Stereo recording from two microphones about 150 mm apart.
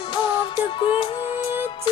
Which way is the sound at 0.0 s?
30° left (ahead or behind).